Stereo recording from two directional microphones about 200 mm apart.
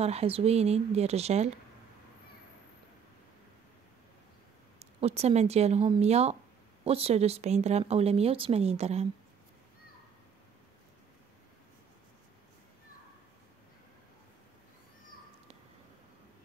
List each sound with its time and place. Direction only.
0.0 s speech: 30° right (ahead or behind)
4.7 s speech: 30° right (ahead or behind)